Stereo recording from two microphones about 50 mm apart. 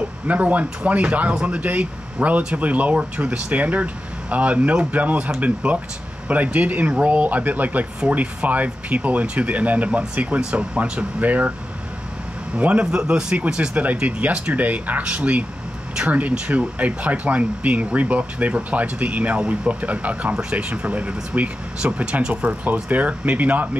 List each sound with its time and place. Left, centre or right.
0.3 s speech: right
10.8 s speech: right
12.5 s speech: right